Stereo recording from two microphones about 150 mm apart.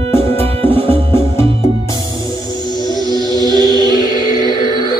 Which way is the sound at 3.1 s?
25° right (ahead or behind).